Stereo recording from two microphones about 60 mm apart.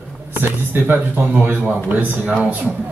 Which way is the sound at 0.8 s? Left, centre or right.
Right.